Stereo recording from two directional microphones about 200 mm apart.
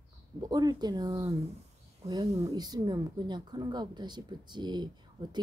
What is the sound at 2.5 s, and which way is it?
Speech, 20° right (ahead or behind).